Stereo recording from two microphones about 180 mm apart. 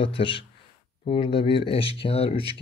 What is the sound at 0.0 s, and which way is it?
Speech, 30° left (ahead or behind).